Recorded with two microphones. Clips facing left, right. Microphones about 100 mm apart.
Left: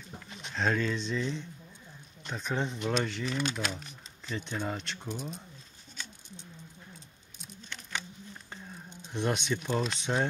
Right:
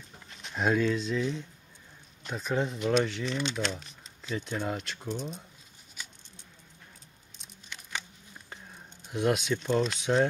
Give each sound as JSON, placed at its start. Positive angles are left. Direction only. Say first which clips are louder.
{"t": 0.6, "sound": "speech", "louder": "right 3 dB", "side_deg": -10}
{"t": 5.0, "sound": "speech", "louder": "right 5 dB", "side_deg": 10}
{"t": 9.0, "sound": "speech", "louder": "right 4 dB", "side_deg": -5}